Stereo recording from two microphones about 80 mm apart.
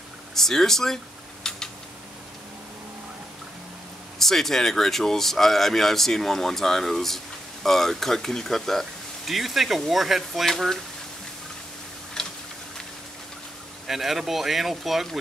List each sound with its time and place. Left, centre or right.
0.3 s a sound: centre
4.2 s speech: centre
12.2 s tick-tock: centre
13.8 s speech: centre